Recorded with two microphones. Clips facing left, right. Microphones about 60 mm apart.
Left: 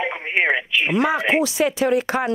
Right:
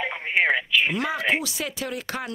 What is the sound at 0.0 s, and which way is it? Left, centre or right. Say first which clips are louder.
Speech: left 2 dB; centre.